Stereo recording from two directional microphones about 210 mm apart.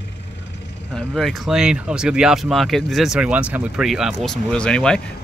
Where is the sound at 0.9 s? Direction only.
Centre (ahead or behind).